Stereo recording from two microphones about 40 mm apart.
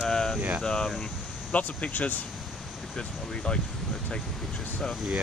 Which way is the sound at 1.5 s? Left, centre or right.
Left.